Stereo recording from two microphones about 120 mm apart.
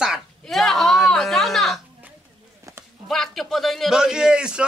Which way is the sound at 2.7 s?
25° right (ahead or behind).